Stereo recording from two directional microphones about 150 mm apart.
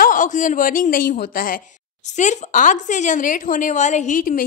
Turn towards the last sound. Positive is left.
turn(degrees=65)  # may be behind; listen again after turning